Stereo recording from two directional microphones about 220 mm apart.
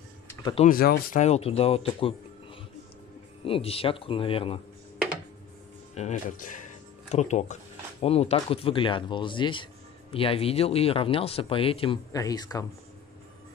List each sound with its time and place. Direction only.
0.4 s speech: 20° left (ahead or behind)
0.7 s speech: 40° left (ahead or behind); by 2.1 s 25° left (ahead or behind)
3.4 s speech: 25° left (ahead or behind)
5.9 s speech: 35° left (ahead or behind); by 12.6 s 15° left (ahead or behind)